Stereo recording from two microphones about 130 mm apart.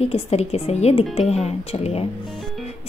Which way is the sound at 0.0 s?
50° left (ahead or behind).